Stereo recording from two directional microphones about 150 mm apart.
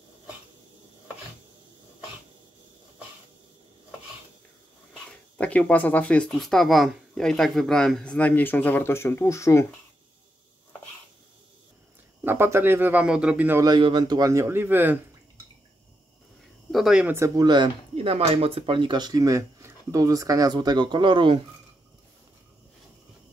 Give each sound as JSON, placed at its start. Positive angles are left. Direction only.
{"t": 5.4, "sound": "speech", "side_deg": 10}
{"t": 12.3, "sound": "speech", "side_deg": -15}
{"t": 13.6, "sound": "speech", "side_deg": -30}
{"t": 16.7, "sound": "speech", "side_deg": -5}
{"t": 17.2, "sound": "speech", "side_deg": -30}